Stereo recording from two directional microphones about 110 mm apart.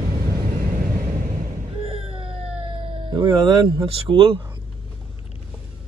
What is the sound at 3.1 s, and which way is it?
Speech, 45° right (ahead or behind).